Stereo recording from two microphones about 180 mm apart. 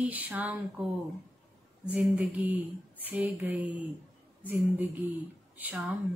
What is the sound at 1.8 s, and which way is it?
Speech, 5° right (ahead or behind).